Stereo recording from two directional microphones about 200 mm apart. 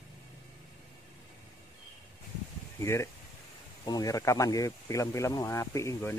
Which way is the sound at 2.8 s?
15° left (ahead or behind).